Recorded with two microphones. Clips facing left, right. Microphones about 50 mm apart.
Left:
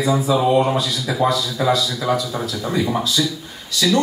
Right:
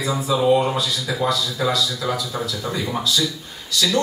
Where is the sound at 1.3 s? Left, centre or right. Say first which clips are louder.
Left 3 dB; left.